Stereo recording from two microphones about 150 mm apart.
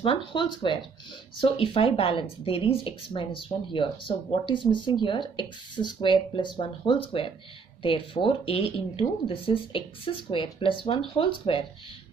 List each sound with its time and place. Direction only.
0.3 s speech: 30° left (ahead or behind)